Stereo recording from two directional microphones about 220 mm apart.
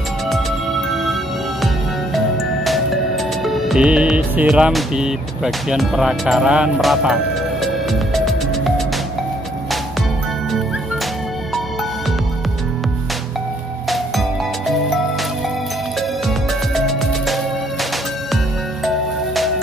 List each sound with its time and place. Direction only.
2.1 s music: centre (ahead or behind)
16.3 s music: centre (ahead or behind)
18.9 s music: centre (ahead or behind)